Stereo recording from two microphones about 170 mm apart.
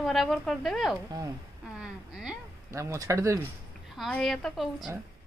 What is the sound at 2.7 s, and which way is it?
Speech, 15° right (ahead or behind).